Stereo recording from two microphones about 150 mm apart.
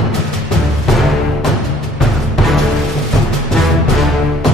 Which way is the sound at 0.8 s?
Centre (ahead or behind).